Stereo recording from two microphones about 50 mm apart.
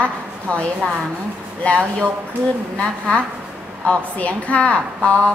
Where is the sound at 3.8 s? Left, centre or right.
Left.